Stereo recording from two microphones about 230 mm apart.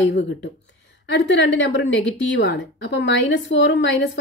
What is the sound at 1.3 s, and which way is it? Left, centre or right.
A woman's voice, left.